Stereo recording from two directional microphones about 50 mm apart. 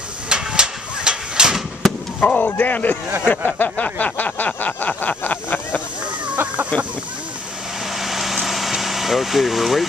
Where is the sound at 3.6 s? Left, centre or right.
Left.